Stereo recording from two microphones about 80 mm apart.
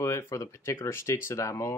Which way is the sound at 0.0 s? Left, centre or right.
Left.